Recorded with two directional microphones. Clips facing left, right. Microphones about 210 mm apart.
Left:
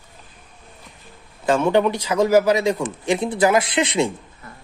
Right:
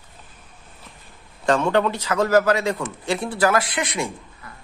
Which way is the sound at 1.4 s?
5° left (ahead or behind).